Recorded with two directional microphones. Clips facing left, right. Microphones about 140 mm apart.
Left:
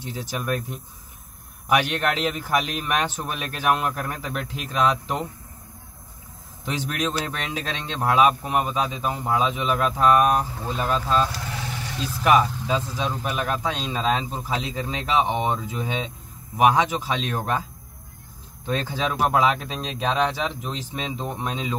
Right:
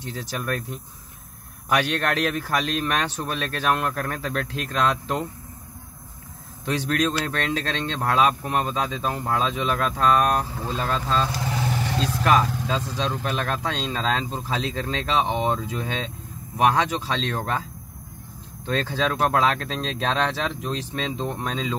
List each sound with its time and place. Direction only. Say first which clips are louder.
0.0 s speech: even; 10° left (ahead or behind)
1.7 s speech: left 1 dB; 15° left (ahead or behind)
6.6 s speech: right 3 dB; 15° left (ahead or behind)
11.9 s vehicle: right 5 dB; 80° right
12.3 s speech: left 2 dB; 10° left (ahead or behind)
18.7 s speech: right 1 dB; 10° left (ahead or behind)